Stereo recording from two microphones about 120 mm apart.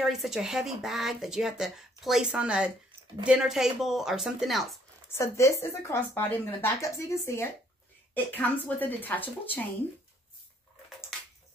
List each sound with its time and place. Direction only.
0.0 s speech: 5° right (ahead or behind)
5.1 s speech: 25° left (ahead or behind)